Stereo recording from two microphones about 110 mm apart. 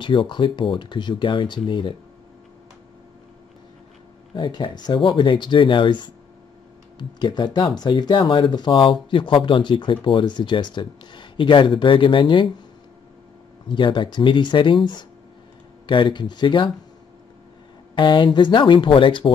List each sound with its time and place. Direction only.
0.0 s speech: 50° left (ahead or behind)
4.4 s speech: 45° left (ahead or behind)
13.7 s speech: 45° left (ahead or behind)
17.9 s speech: 45° left (ahead or behind)